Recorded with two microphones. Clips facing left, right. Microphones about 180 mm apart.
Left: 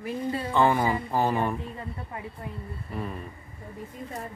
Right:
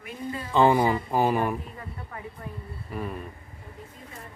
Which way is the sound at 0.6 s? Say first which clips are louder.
Right 3 dB; 20° right (ahead or behind).